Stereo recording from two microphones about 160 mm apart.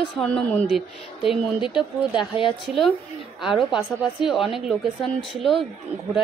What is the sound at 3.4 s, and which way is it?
A woman's voice, 5° right (ahead or behind).